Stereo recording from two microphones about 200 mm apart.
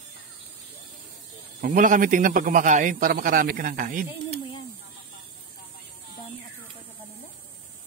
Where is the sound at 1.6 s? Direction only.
40° right (ahead or behind).